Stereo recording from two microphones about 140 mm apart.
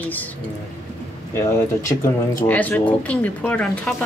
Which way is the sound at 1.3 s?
20° left (ahead or behind).